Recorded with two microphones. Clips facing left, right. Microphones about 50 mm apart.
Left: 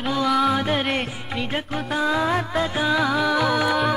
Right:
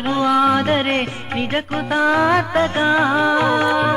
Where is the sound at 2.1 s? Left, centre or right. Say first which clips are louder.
Right 7 dB; right.